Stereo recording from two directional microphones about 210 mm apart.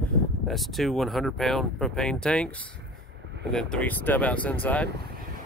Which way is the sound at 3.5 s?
5° left (ahead or behind).